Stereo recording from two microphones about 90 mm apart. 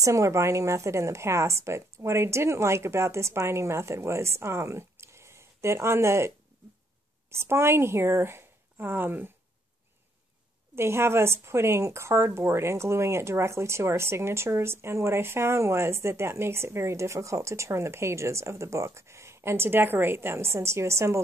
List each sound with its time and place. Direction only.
0.0 s a woman's voice: 35° right (ahead or behind)
10.8 s speech: 30° right (ahead or behind)